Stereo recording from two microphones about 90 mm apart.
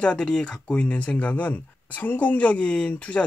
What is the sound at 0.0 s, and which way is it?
Speech, 10° left (ahead or behind).